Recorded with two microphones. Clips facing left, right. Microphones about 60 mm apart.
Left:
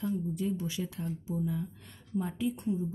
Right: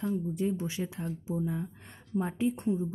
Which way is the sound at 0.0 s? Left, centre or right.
Right.